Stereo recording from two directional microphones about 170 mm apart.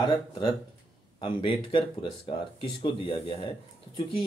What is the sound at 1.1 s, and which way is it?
Speech, 30° left (ahead or behind).